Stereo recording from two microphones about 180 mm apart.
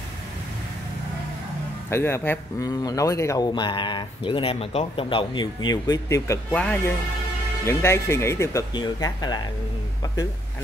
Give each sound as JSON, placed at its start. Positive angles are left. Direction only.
{"t": 1.9, "sound": "speech", "side_deg": 15}